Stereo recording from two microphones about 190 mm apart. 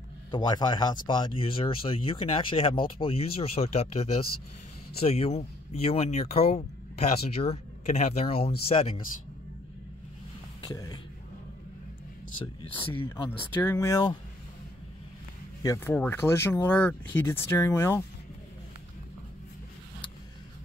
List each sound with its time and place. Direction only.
0.3 s speech: 20° left (ahead or behind)
10.6 s speech: 20° left (ahead or behind)
12.7 s speech: 25° left (ahead or behind)
13.6 s speech: 15° left (ahead or behind)
15.6 s speech: 15° left (ahead or behind)